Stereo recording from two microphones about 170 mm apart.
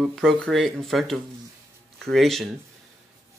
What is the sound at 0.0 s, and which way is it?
Speech, centre (ahead or behind).